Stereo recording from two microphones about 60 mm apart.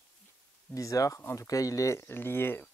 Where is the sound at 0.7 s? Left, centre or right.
Left.